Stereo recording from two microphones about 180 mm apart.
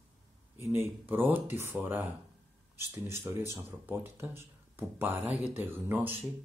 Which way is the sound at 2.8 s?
15° right (ahead or behind).